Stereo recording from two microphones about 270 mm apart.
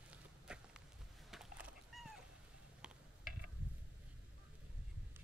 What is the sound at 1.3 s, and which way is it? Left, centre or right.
Cat, centre.